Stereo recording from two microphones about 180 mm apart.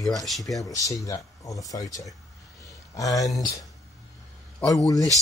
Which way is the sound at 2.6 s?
20° left (ahead or behind).